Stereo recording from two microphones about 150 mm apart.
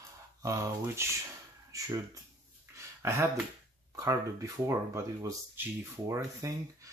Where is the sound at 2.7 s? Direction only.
20° right (ahead or behind).